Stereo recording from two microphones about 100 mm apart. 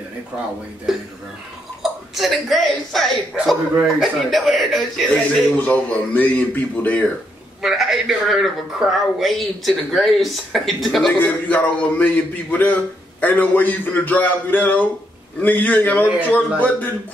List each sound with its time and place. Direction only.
0.9 s a man's voice: 5° right (ahead or behind)
5.1 s a man's voice: 15° left (ahead or behind)
7.6 s a man's voice: centre (ahead or behind)
11.1 s a man's voice: 15° left (ahead or behind)